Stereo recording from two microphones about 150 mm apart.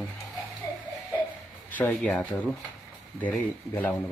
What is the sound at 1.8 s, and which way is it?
Speech, 10° left (ahead or behind).